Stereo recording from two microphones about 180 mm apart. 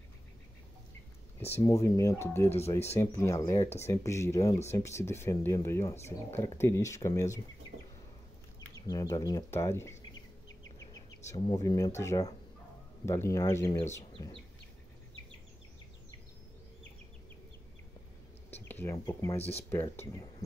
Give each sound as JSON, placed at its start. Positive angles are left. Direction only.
{"t": 1.4, "sound": "speech", "side_deg": 15}
{"t": 8.5, "sound": "speech", "side_deg": 20}
{"t": 18.7, "sound": "speech", "side_deg": 15}